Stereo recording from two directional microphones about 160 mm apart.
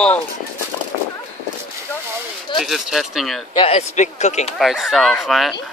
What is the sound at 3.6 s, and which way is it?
Speech, 40° left (ahead or behind).